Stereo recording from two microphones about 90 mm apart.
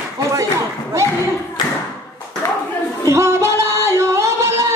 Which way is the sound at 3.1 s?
30° right (ahead or behind).